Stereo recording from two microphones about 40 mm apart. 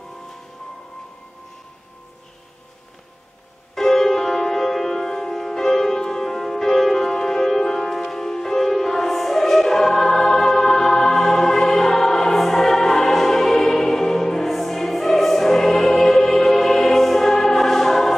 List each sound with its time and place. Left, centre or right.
3.7 s music: centre